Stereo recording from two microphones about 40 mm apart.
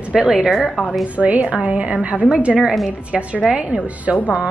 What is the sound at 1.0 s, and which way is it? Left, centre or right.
A woman's voice, right.